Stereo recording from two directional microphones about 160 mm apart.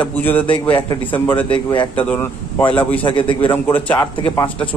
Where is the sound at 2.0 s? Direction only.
10° left (ahead or behind).